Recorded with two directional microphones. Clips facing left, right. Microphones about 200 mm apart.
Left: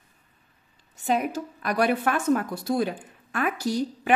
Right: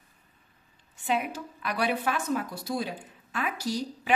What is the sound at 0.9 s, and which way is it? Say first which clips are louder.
A woman's voice: left 4 dB; 40° left (ahead or behind).